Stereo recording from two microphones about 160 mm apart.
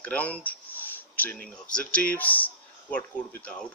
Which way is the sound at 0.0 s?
10° left (ahead or behind).